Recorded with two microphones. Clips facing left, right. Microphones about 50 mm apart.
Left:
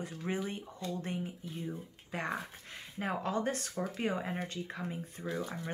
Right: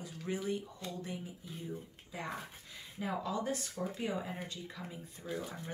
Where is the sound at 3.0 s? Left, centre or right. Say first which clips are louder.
Left 3 dB; left.